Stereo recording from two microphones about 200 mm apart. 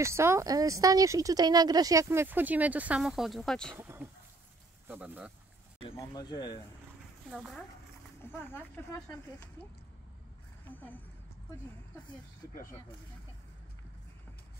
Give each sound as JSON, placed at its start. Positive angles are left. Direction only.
{"t": 0.0, "sound": "speech", "side_deg": -15}
{"t": 3.7, "sound": "speech", "side_deg": -10}
{"t": 5.8, "sound": "speech", "side_deg": 20}
{"t": 8.3, "sound": "speech", "side_deg": 10}
{"t": 10.7, "sound": "speech", "side_deg": 10}